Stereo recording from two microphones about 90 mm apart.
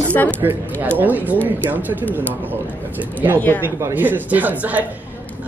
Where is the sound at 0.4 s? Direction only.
25° right (ahead or behind).